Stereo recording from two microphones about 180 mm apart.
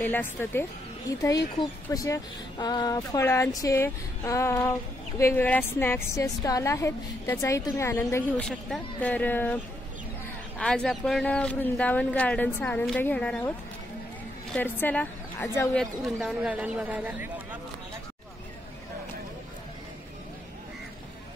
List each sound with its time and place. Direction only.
0.0 s speech: 10° left (ahead or behind)
10.6 s speech: 5° left (ahead or behind)
14.5 s a woman's voice: 10° left (ahead or behind)
15.7 s speech: centre (ahead or behind)